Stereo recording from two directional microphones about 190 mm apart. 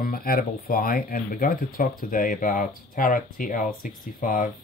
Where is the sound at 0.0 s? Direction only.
50° left (ahead or behind).